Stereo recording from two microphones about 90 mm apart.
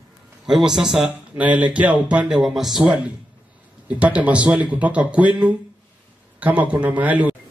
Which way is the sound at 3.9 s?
15° right (ahead or behind).